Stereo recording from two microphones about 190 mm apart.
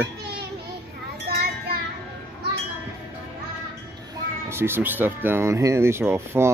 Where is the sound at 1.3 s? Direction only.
55° right (ahead or behind).